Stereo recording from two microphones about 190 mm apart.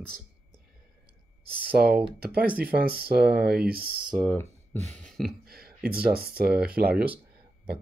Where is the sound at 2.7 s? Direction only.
55° right (ahead or behind).